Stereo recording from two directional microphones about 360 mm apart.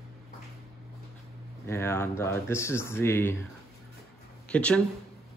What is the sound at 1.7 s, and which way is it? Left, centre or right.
Speech, centre.